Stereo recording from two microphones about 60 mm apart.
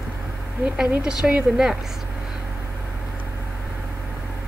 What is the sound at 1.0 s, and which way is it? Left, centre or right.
Speech, centre.